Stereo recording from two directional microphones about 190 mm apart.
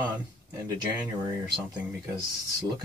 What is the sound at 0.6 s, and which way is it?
Speech, 10° right (ahead or behind).